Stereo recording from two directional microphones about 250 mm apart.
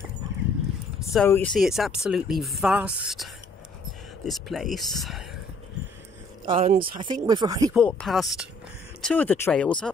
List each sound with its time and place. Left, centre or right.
0.9 s a sound: centre
1.3 s speech: centre
6.4 s speech: right
7.7 s speech: centre